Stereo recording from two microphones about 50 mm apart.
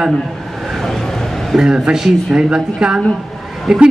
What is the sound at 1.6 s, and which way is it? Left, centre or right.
Speech, centre.